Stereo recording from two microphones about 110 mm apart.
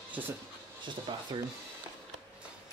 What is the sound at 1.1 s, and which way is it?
Speech, 50° right (ahead or behind).